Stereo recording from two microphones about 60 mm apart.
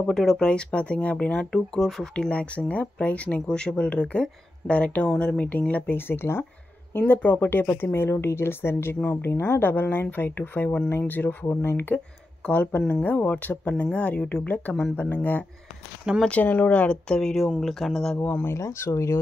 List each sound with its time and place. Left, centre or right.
0.0 s speech: centre
0.4 s speech: centre
1.5 s speech: centre
2.1 s speech: centre
5.1 s speech: centre
5.4 s speech: left
5.9 s speech: left
12.4 s speech: left; by 18.2 s centre
18.5 s speech: left